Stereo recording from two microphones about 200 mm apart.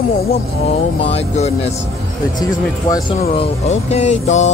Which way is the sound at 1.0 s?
30° left (ahead or behind).